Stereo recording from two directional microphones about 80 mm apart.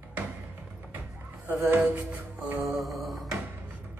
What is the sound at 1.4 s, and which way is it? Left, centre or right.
Music, right.